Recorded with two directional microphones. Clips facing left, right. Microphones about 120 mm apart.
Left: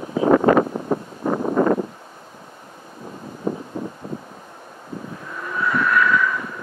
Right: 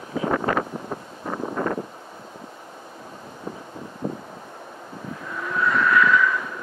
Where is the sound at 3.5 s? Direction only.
45° left (ahead or behind).